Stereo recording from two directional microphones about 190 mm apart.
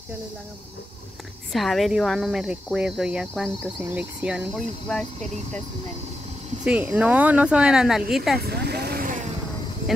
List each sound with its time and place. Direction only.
1.5 s speech: centre (ahead or behind)
6.6 s speech: 5° right (ahead or behind)
8.4 s speech: 60° right (ahead or behind)